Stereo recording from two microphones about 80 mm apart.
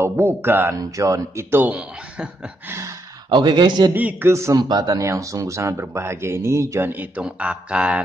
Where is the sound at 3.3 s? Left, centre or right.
Right.